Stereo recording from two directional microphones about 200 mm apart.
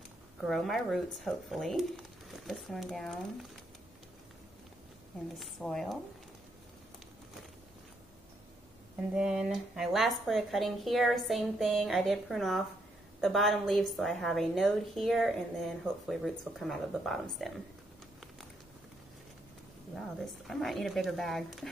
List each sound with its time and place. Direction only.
0.4 s speech: centre (ahead or behind)
5.4 s speech: centre (ahead or behind)
9.1 s speech: 5° right (ahead or behind)
20.0 s speech: centre (ahead or behind)